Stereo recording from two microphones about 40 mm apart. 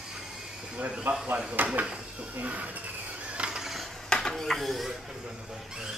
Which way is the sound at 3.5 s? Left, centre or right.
Centre.